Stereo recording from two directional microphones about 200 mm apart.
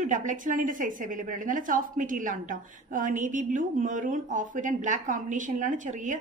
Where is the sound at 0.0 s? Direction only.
40° right (ahead or behind).